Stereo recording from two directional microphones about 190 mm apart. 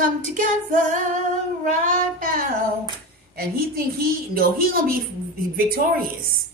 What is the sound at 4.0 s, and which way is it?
A woman's voice, 50° right (ahead or behind).